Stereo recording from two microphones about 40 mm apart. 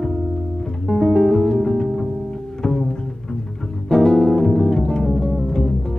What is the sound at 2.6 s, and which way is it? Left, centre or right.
Bowed string instrument, centre.